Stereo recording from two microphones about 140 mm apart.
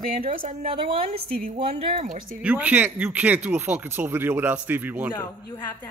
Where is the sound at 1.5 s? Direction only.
50° right (ahead or behind).